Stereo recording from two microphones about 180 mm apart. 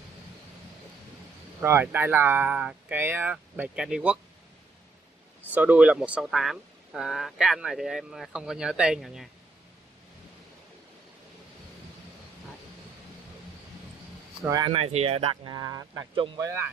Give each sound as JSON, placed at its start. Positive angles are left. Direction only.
{"t": 1.6, "sound": "speech", "side_deg": -10}
{"t": 5.5, "sound": "speech", "side_deg": -5}
{"t": 14.4, "sound": "speech", "side_deg": -20}
{"t": 14.7, "sound": "speech", "side_deg": -35}
{"t": 16.4, "sound": "speech", "side_deg": -10}